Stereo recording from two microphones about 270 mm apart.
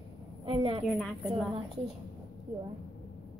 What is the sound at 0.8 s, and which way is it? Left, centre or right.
Speech, centre.